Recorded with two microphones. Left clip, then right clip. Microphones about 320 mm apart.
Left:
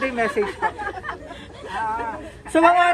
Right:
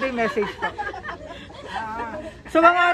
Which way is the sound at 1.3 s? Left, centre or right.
Centre.